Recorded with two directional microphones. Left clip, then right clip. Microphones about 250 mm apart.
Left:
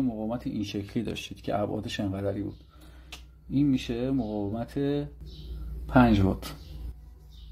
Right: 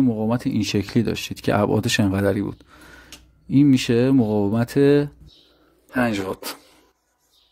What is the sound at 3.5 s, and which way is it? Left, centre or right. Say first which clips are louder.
Speech: right 10 dB; right.